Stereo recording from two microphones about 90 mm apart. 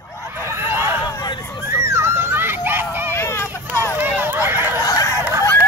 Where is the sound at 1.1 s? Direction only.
50° left (ahead or behind).